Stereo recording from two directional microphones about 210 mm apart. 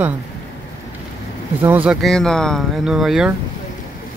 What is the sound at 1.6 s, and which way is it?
Speech, 5° right (ahead or behind).